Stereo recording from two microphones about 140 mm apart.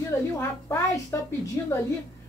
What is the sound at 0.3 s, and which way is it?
Speech, 20° left (ahead or behind).